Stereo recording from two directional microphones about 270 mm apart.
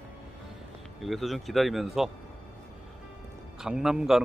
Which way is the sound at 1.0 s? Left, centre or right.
Centre.